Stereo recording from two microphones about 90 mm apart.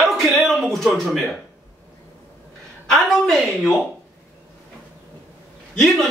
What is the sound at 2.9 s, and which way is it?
Speech, centre (ahead or behind).